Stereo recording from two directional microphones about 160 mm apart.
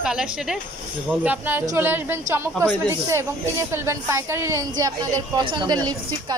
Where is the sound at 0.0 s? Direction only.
5° right (ahead or behind).